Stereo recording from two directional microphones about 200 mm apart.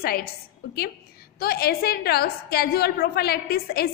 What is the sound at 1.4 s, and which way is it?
A woman's voice, 50° left (ahead or behind).